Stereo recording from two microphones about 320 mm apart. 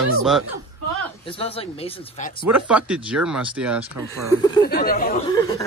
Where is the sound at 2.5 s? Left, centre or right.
Centre.